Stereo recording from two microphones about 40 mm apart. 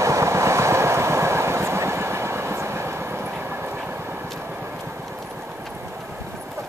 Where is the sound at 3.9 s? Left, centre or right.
Right.